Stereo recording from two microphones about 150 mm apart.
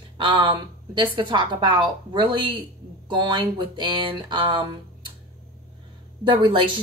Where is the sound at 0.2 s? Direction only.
35° right (ahead or behind).